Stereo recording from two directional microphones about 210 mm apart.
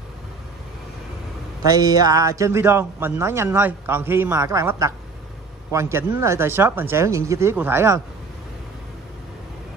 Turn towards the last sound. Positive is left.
turn(degrees=-10)  # may be behind; listen again after turning